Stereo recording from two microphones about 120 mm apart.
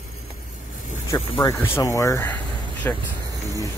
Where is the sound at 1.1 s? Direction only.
30° left (ahead or behind).